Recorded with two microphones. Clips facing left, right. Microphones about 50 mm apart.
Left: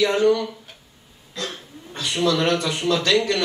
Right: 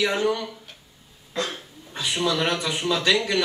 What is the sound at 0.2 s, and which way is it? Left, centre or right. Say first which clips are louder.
Speech: left 6 dB; centre.